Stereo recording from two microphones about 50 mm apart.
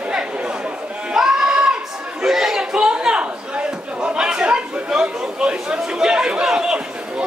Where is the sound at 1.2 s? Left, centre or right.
Centre.